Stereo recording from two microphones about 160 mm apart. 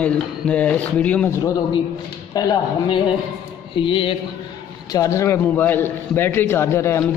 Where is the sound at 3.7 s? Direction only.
35° left (ahead or behind).